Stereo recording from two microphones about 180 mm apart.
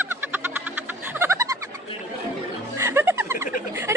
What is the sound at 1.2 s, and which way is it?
Bird, 15° right (ahead or behind).